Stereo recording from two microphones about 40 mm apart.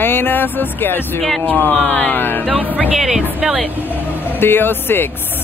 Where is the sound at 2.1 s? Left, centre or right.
Left.